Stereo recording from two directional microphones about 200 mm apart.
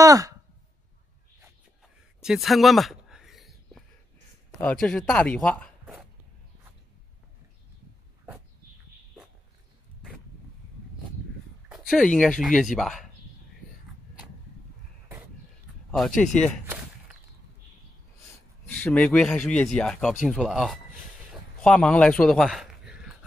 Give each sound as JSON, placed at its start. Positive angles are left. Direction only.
{"t": 0.0, "sound": "sigh", "side_deg": -15}
{"t": 2.2, "sound": "a sound", "side_deg": 0}
{"t": 4.6, "sound": "speech", "side_deg": 5}
{"t": 11.7, "sound": "speech", "side_deg": 0}
{"t": 16.2, "sound": "speech", "side_deg": 5}
{"t": 18.7, "sound": "speech", "side_deg": 5}